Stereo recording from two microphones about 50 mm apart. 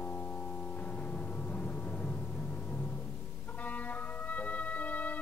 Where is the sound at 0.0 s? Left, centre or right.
Left.